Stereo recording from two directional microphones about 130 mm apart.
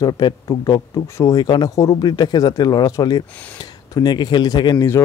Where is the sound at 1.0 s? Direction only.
20° left (ahead or behind).